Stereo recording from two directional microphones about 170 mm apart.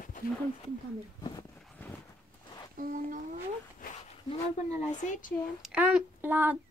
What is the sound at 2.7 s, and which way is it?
Speech, 55° right (ahead or behind).